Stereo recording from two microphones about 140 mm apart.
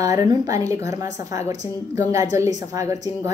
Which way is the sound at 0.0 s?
25° right (ahead or behind).